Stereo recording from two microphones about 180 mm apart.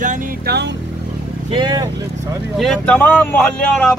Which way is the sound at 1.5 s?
25° right (ahead or behind).